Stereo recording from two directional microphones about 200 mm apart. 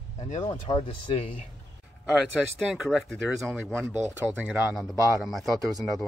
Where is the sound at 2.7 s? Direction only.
Centre (ahead or behind).